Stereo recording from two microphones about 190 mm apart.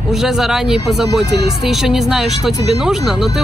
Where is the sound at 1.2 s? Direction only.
60° right (ahead or behind).